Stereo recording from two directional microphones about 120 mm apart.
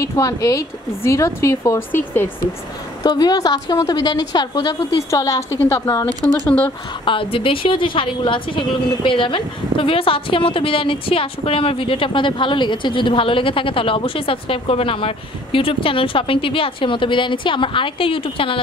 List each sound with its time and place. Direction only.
0.0 s a woman's voice: 30° left (ahead or behind)
3.0 s a woman's voice: 35° left (ahead or behind)
5.6 s speech: 15° left (ahead or behind)
7.1 s a woman's voice: 45° left (ahead or behind)